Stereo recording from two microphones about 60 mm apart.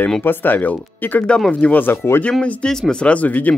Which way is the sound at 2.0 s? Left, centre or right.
Left.